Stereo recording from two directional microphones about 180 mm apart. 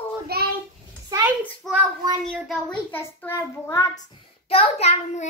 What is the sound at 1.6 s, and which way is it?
Speech, 5° left (ahead or behind).